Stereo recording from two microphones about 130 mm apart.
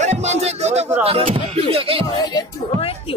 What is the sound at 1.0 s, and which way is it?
Speech, 45° right (ahead or behind).